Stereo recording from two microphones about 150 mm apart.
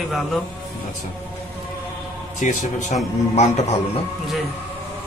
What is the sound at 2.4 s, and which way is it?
Speech, 55° left (ahead or behind).